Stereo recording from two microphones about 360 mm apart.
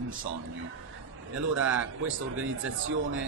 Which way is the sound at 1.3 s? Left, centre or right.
Right.